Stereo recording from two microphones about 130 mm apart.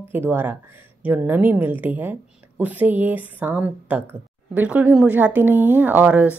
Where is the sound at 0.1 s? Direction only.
15° right (ahead or behind).